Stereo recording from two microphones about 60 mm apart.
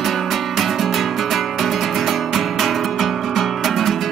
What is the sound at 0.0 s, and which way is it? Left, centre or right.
Music, centre.